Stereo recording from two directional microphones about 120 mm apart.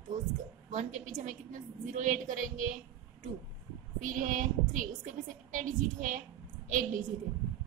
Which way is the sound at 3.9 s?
90° right.